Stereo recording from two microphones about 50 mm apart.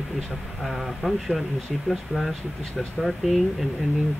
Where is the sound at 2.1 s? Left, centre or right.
Right.